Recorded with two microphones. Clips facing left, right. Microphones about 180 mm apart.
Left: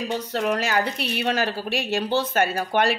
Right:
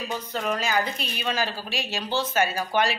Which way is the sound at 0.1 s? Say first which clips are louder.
Left 4 dB; 70° left (ahead or behind).